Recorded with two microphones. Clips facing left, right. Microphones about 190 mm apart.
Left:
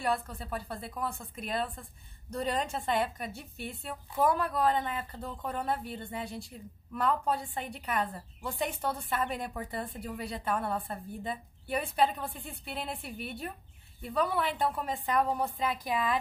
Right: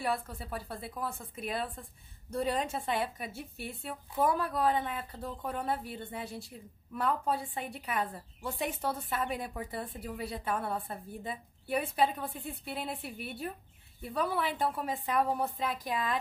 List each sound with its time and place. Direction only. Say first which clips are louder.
0.0 s a woman's voice: left 2 dB; 5° right (ahead or behind)